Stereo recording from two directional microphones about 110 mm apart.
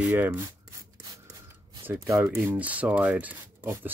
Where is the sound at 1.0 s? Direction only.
30° right (ahead or behind).